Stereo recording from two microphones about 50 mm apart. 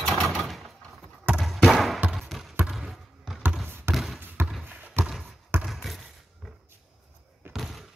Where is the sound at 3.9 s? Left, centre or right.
Centre.